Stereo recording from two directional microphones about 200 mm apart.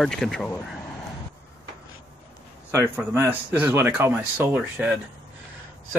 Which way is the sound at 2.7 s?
10° right (ahead or behind).